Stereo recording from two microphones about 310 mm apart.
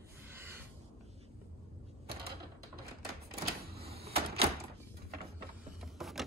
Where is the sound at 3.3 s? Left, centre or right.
Right.